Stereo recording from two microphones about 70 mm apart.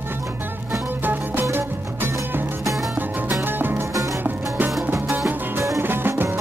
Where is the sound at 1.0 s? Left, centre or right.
Right.